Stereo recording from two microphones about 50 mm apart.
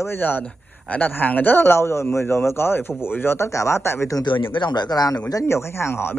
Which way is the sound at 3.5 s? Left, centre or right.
Left.